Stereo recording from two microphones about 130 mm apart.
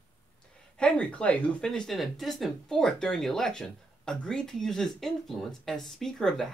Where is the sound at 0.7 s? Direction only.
10° left (ahead or behind).